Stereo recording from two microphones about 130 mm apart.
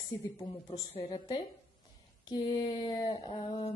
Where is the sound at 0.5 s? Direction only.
40° left (ahead or behind).